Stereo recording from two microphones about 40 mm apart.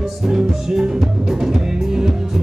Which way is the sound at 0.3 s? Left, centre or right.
Centre.